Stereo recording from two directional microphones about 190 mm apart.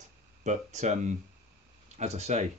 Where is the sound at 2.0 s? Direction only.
35° right (ahead or behind).